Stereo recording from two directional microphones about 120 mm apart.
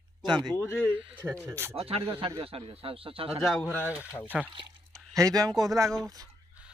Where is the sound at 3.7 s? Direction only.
20° left (ahead or behind).